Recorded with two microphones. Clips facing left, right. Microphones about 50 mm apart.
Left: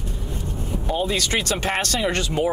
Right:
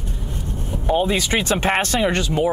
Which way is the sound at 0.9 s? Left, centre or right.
Right.